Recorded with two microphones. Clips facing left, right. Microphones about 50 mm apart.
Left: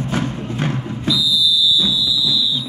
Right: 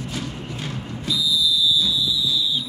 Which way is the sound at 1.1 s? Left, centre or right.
Right.